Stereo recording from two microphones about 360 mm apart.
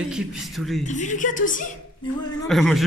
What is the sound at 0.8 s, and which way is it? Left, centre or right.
Speech, left.